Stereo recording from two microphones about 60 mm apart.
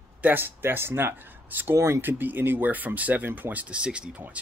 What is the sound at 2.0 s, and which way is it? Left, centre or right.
Speech, right.